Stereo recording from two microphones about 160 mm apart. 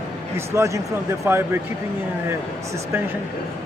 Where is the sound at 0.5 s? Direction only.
15° right (ahead or behind).